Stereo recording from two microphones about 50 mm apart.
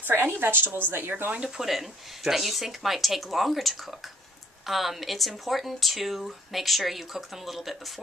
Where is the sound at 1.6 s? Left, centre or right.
Centre.